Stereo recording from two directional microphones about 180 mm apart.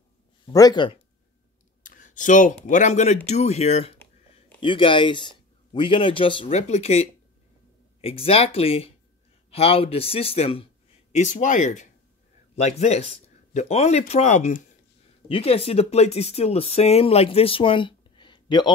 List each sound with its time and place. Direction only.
0.5 s a man's voice: 20° left (ahead or behind)
1.8 s clicking: 45° left (ahead or behind)
2.7 s a man's voice: 40° left (ahead or behind)
15.2 s speech: 30° left (ahead or behind)